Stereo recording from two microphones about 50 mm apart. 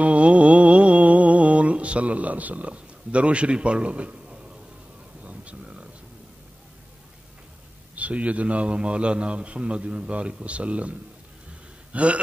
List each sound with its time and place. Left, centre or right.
0.0 s a sound: right
7.9 s a man's voice: right
11.9 s gasp: right